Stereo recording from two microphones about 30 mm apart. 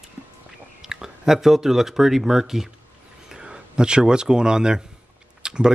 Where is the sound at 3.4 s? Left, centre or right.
Right.